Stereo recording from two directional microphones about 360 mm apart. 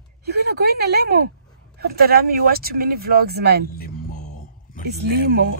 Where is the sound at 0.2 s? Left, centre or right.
Right.